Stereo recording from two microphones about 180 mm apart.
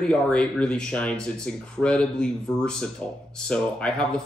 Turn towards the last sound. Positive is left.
turn(degrees=5)  # may be behind; listen again after turning